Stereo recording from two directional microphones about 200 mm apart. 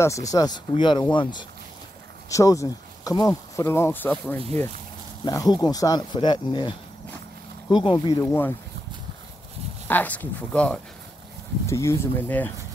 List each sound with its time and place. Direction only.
0.0 s speech: 15° left (ahead or behind)
5.2 s speech: 20° left (ahead or behind)
7.7 s speech: 25° left (ahead or behind)
9.8 s speech: 10° left (ahead or behind)